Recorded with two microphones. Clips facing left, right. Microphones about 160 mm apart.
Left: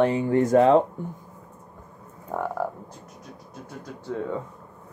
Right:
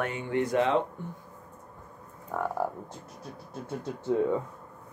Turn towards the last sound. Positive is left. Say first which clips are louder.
# right 4 dB
turn(degrees=-25)  # may be behind; listen again after turning